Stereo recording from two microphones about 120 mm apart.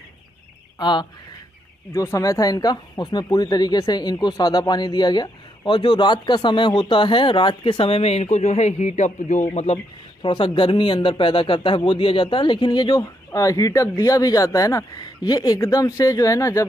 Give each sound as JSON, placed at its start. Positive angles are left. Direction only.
{"t": 0.7, "sound": "speech", "side_deg": 40}
{"t": 1.9, "sound": "speech", "side_deg": 25}
{"t": 10.2, "sound": "speech", "side_deg": 40}